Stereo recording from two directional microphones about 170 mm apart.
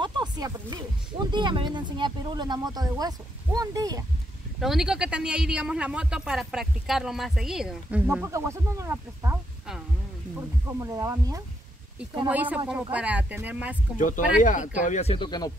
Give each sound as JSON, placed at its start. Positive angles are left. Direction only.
{"t": 0.0, "sound": "a sound", "side_deg": -25}
{"t": 1.3, "sound": "speech", "side_deg": -30}
{"t": 4.6, "sound": "a man's voice", "side_deg": 0}
{"t": 8.1, "sound": "speech", "side_deg": -15}
{"t": 10.8, "sound": "speech", "side_deg": -20}
{"t": 12.3, "sound": "speech", "side_deg": -10}
{"t": 13.9, "sound": "speech", "side_deg": 50}
{"t": 15.2, "sound": "speech", "side_deg": 25}